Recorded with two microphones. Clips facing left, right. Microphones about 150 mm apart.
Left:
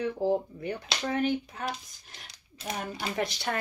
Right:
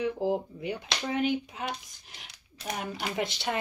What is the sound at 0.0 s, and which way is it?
Speech, 15° right (ahead or behind).